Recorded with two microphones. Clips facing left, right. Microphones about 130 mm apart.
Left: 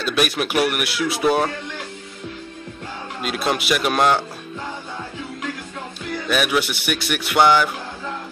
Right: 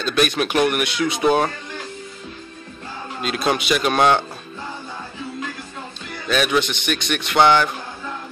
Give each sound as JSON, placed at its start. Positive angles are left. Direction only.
{"t": 0.0, "sound": "speech", "side_deg": 5}
{"t": 3.2, "sound": "speech", "side_deg": 5}
{"t": 6.2, "sound": "a man's voice", "side_deg": 5}